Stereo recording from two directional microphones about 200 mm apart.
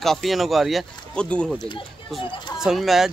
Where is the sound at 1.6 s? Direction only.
25° left (ahead or behind).